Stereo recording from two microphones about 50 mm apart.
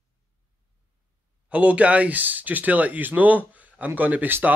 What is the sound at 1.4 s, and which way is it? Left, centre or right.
Speech, right.